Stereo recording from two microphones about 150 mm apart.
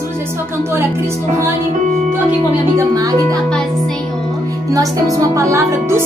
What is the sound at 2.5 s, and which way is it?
Speech, 20° right (ahead or behind).